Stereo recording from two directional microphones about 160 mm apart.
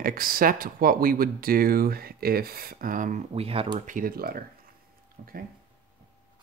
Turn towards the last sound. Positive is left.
turn(degrees=-75)  # may be behind; listen again after turning